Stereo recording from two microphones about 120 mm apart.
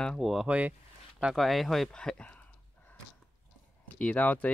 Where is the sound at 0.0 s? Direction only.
Centre (ahead or behind).